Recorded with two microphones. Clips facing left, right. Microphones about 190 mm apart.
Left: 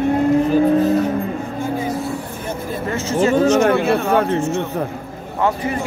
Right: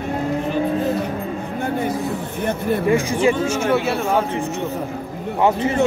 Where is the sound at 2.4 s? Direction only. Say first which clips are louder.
Right 8 dB; 65° right (ahead or behind).